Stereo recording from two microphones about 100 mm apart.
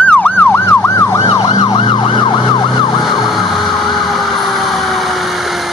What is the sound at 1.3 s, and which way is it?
Emergency vehicle, 45° left (ahead or behind).